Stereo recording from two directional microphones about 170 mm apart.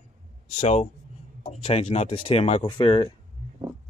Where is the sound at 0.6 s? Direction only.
40° left (ahead or behind).